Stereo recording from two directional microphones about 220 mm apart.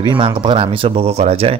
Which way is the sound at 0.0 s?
20° right (ahead or behind).